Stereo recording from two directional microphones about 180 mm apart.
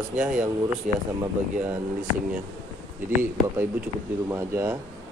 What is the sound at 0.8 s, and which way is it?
Speech, 45° right (ahead or behind).